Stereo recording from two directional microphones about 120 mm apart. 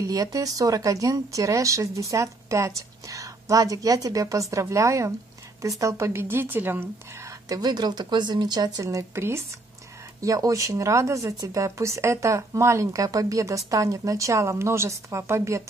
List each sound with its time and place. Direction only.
0.0 s speech: 30° right (ahead or behind)
7.4 s speech: 30° right (ahead or behind)